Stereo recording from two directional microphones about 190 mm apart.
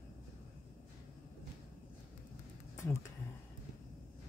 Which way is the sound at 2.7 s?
15° left (ahead or behind).